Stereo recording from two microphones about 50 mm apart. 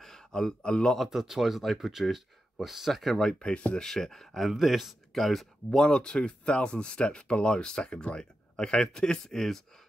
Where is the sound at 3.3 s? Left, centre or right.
Left.